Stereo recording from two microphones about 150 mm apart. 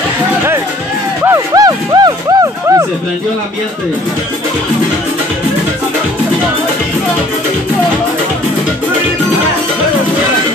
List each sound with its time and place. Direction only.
1.2 s music: 20° right (ahead or behind)